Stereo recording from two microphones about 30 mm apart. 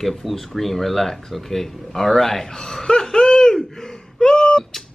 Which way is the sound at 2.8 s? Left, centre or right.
Left.